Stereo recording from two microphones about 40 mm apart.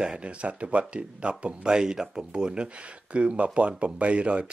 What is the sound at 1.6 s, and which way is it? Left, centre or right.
Speech, centre.